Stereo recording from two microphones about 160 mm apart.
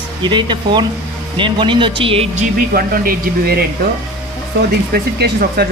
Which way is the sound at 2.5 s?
65° right (ahead or behind).